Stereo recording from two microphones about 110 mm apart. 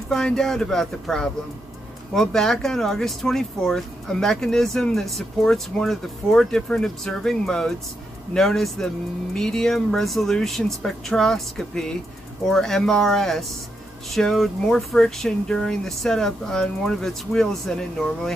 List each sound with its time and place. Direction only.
0.1 s speech: 5° left (ahead or behind)